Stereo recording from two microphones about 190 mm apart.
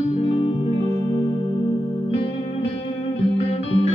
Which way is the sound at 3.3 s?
30° left (ahead or behind).